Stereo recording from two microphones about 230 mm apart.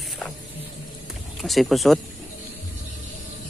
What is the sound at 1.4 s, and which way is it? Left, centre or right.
Speech, centre.